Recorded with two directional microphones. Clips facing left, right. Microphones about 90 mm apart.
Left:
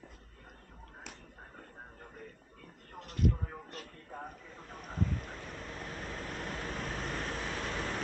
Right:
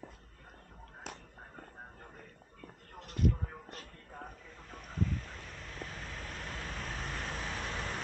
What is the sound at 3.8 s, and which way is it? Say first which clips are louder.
Vehicle: left 3 dB; 15° left (ahead or behind).